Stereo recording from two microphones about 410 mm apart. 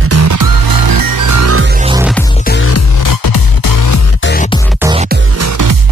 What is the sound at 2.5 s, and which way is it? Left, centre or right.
Music, left.